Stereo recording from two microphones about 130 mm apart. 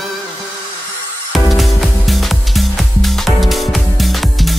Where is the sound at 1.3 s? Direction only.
Centre (ahead or behind).